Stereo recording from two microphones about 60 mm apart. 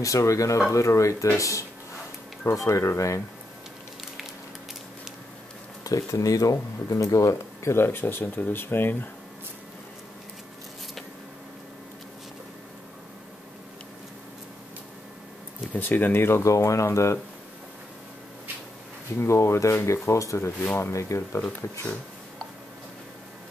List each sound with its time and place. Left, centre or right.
0.0 s speech: left
5.9 s speech: left
7.7 s speech: left
15.7 s speech: left
16.4 s speech: left
19.1 s speech: left
20.6 s speech: left